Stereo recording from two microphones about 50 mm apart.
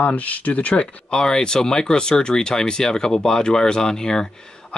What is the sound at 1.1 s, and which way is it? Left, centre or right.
Speech, centre.